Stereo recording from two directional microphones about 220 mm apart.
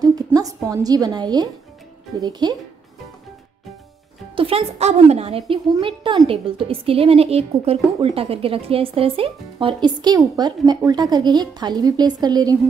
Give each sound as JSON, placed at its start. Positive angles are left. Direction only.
{"t": 0.0, "sound": "a woman's voice", "side_deg": -15}
{"t": 4.4, "sound": "a woman's voice", "side_deg": -25}